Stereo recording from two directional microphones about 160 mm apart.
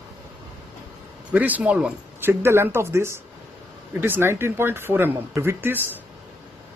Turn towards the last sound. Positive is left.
turn(degrees=-15)  # may be behind; listen again after turning